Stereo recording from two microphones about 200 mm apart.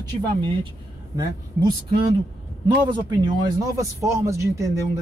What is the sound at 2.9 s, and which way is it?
Speech, 20° right (ahead or behind).